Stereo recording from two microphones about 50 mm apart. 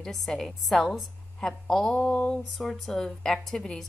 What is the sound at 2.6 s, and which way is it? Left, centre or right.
A woman's voice, centre.